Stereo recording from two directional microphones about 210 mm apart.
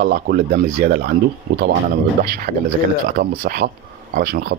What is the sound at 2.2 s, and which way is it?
Speech, 45° right (ahead or behind).